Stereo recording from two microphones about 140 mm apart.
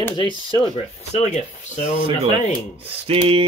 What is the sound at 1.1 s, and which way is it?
Speech, 55° left (ahead or behind).